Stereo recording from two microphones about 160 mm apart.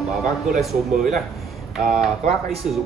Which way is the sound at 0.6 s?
Centre (ahead or behind).